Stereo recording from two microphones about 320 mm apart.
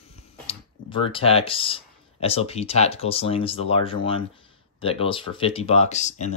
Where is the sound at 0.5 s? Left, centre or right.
Centre.